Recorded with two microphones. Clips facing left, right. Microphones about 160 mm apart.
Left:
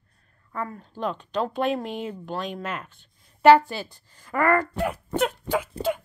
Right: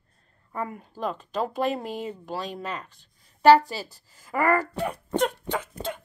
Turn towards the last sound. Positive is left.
turn(degrees=10)  # may be behind; listen again after turning